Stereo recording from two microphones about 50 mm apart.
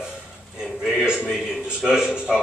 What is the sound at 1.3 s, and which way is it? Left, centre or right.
A man's voice, centre.